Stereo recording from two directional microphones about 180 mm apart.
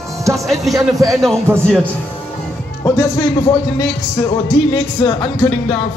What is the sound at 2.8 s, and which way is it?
Speech, 15° left (ahead or behind).